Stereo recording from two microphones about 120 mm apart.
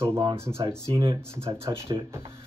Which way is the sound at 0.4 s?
20° right (ahead or behind).